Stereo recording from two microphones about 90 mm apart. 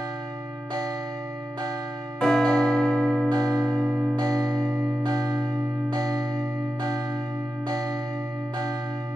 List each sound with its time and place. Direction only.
2.1 s music: 5° left (ahead or behind)
3.3 s music: 45° right (ahead or behind)
3.6 s music: centre (ahead or behind)
4.2 s music: 45° right (ahead or behind)